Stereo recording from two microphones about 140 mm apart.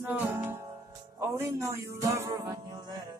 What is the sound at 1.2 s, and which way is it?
Speech, 20° right (ahead or behind).